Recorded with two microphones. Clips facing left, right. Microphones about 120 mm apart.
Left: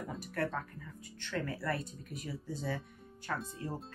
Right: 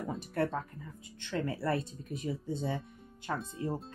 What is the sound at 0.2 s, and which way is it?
Speech, 25° right (ahead or behind).